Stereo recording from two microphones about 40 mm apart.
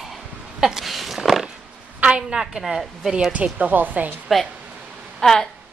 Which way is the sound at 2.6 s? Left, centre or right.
Centre.